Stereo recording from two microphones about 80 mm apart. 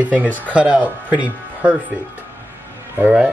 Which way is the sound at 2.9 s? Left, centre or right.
Centre.